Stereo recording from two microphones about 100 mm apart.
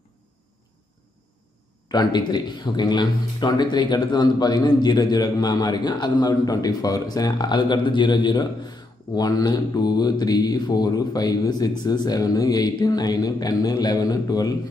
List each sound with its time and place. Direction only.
1.9 s speech: 45° left (ahead or behind)